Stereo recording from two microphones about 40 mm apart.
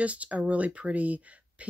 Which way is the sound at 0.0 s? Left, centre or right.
Right.